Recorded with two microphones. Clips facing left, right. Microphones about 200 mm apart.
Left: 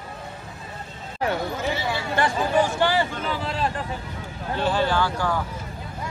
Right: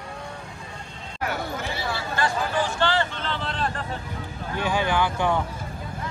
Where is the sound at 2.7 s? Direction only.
10° left (ahead or behind).